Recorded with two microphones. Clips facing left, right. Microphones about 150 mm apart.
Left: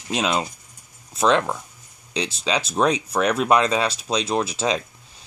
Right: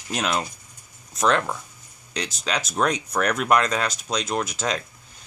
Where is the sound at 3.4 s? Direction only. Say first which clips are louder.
Left 2 dB; 20° left (ahead or behind).